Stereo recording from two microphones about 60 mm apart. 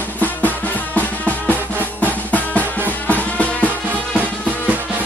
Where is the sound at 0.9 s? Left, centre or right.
Left.